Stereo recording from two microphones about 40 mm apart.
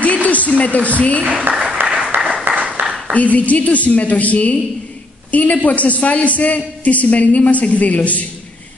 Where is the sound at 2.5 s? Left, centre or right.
Right.